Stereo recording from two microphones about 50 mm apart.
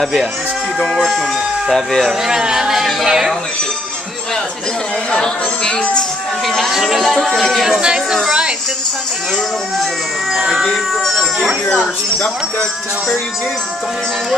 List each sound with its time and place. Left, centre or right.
0.0 s speech: centre
1.7 s speech: centre
2.2 s speech: centre
5.1 s speech: centre
6.4 s speech: centre
6.7 s speech: centre
7.8 s speech: centre
10.5 s music: centre
11.1 s a sound: centre